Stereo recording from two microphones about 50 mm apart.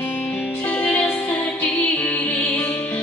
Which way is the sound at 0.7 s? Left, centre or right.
Left.